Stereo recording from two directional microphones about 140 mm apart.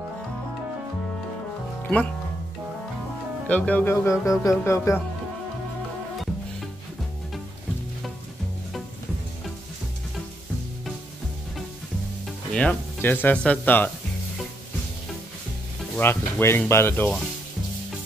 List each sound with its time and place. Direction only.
1.8 s music: 10° left (ahead or behind)
3.4 s music: 10° left (ahead or behind)
12.3 s speech: 10° left (ahead or behind)
16.0 s speech: 15° left (ahead or behind)